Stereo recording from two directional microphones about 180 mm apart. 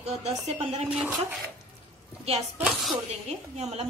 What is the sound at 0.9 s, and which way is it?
Speech, 5° right (ahead or behind).